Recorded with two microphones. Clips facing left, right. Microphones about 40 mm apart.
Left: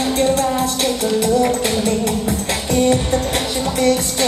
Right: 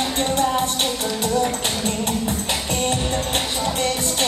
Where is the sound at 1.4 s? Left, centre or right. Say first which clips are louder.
Left 5 dB; left.